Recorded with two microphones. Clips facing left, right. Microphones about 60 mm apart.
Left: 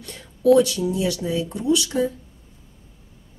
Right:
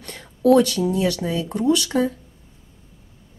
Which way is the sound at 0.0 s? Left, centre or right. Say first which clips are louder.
Even; right.